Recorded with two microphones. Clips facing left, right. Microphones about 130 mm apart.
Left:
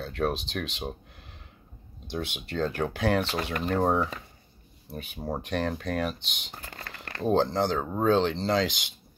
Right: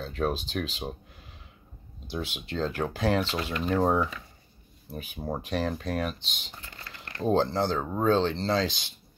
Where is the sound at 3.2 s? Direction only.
50° left (ahead or behind).